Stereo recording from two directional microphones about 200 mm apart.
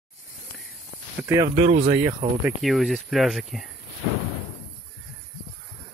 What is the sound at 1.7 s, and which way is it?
Speech, 30° right (ahead or behind).